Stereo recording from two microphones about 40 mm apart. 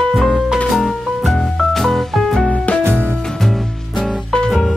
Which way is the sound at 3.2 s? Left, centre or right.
Centre.